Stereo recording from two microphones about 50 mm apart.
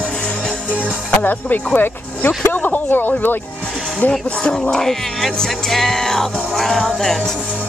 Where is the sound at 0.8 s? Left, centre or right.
Left.